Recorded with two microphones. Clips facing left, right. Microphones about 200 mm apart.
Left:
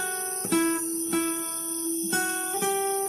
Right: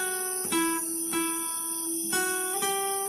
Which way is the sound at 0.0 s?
40° left (ahead or behind).